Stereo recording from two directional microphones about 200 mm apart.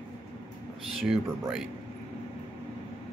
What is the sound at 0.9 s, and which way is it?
Speech, centre (ahead or behind).